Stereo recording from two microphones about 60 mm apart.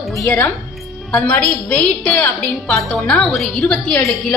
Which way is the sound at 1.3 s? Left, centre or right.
Left.